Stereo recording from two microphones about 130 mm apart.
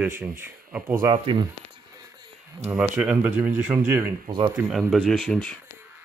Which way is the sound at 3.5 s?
20° right (ahead or behind).